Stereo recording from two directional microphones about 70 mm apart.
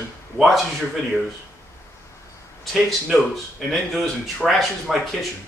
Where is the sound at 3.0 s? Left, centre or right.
Centre.